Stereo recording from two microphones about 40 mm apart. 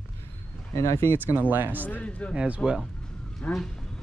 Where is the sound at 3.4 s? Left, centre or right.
Left.